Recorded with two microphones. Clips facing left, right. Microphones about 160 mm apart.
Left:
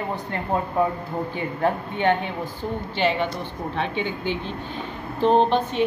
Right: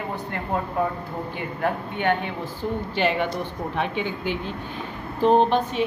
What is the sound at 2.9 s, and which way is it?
Speech, 5° right (ahead or behind).